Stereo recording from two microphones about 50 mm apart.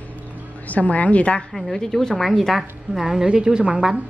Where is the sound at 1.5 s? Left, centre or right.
Centre.